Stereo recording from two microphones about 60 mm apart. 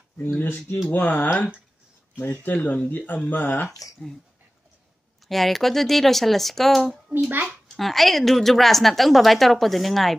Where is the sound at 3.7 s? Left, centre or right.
Left.